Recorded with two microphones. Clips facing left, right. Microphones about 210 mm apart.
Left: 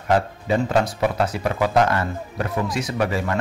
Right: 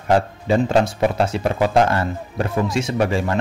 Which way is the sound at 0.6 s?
25° right (ahead or behind).